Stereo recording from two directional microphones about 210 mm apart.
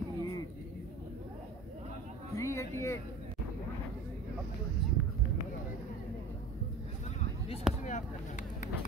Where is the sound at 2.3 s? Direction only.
15° left (ahead or behind).